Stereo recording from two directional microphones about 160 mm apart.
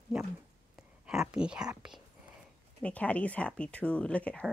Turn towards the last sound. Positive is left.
turn(degrees=10)  # may be behind; listen again after turning